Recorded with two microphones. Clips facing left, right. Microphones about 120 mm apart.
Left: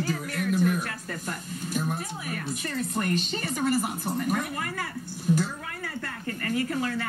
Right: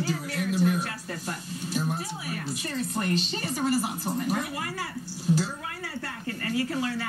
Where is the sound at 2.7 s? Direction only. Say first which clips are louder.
Even; 50° left (ahead or behind).